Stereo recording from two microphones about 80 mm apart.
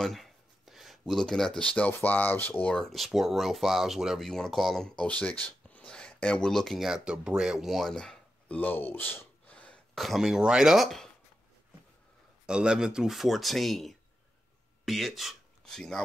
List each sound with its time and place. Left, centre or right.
0.0 s speech: centre; by 2.7 s left
2.7 s speech: centre
8.5 s speech: left
9.5 s throat clearing: centre
9.9 s speech: centre
12.4 s speech: centre